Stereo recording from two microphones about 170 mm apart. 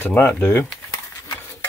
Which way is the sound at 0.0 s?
10° left (ahead or behind).